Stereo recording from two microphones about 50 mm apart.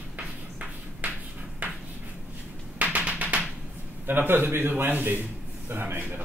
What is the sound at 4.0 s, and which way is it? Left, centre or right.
A man's voice, right.